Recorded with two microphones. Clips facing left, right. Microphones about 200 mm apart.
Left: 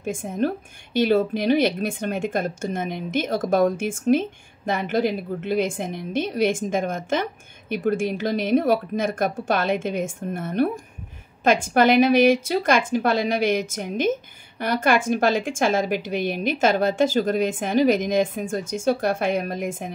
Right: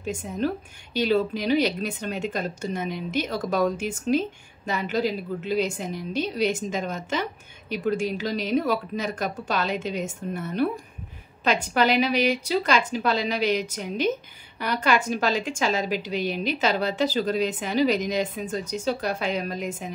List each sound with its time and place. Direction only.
0.0 s a woman's voice: 50° left (ahead or behind)